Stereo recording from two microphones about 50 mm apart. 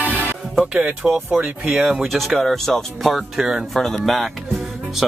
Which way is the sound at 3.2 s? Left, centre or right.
Centre.